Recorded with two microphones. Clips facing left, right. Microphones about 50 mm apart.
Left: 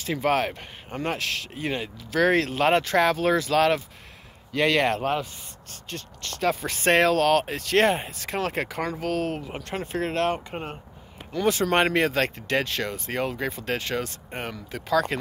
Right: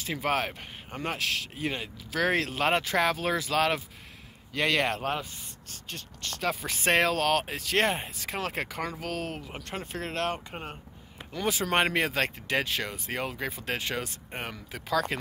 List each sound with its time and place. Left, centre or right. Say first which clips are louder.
0.0 s speech: left 5 dB; centre
9.7 s speech: left 7 dB; left
11.3 s speech: left 5 dB; centre
13.6 s speech: left 4 dB; centre